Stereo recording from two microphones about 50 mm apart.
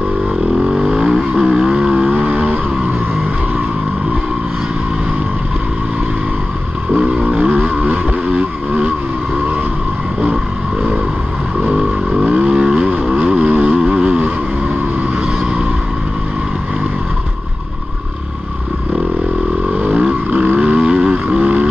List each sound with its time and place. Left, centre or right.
0.7 s vehicle: centre
7.0 s vehicle: right
12.2 s vehicle: centre
19.8 s a sound: right